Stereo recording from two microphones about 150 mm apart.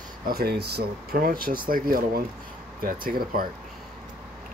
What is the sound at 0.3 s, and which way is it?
Speech, 90° right.